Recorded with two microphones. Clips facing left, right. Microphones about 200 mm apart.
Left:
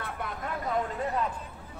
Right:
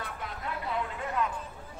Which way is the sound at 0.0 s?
50° left (ahead or behind).